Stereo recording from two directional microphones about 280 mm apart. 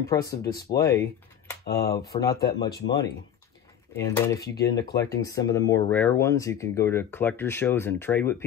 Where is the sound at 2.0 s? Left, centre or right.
Centre.